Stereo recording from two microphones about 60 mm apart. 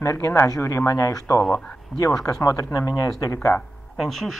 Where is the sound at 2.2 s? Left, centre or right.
Left.